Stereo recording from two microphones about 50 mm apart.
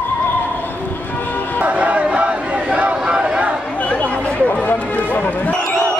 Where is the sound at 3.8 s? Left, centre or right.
Left.